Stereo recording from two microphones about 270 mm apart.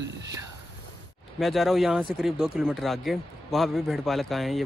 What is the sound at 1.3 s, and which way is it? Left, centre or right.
Speech, centre.